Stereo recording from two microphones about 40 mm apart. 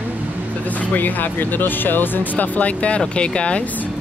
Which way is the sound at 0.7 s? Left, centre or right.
Left.